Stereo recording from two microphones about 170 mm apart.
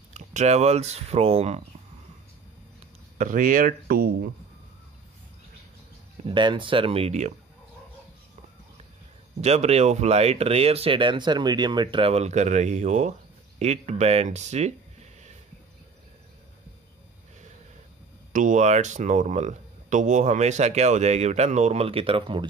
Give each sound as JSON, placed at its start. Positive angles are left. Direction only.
{"t": 0.1, "sound": "speech", "side_deg": -45}
{"t": 3.2, "sound": "speech", "side_deg": -50}
{"t": 6.2, "sound": "speech", "side_deg": -30}
{"t": 9.4, "sound": "speech", "side_deg": -40}
{"t": 18.3, "sound": "speech", "side_deg": -45}